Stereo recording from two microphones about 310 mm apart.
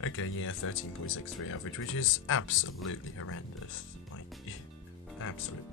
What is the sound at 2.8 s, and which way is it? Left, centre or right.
Music, left.